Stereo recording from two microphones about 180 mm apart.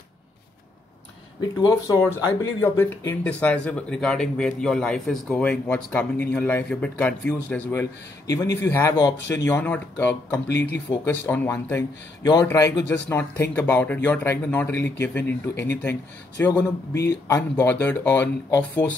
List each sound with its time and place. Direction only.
1.6 s speech: 15° left (ahead or behind)
10.9 s speech: 25° left (ahead or behind)
11.2 s speech: 10° left (ahead or behind)